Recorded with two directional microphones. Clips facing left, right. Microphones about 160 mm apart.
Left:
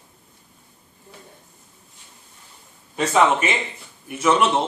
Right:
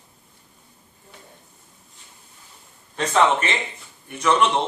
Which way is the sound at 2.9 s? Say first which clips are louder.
Left 1 dB; 10° left (ahead or behind).